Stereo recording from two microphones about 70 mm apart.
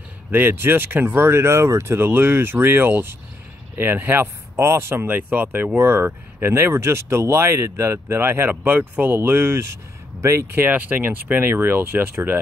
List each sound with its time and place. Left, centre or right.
0.3 s speech: right